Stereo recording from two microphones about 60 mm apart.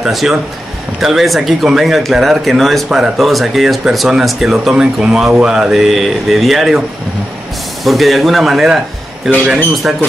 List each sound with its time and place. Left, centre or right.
0.0 s speech: centre
7.8 s speech: centre
9.3 s speech: right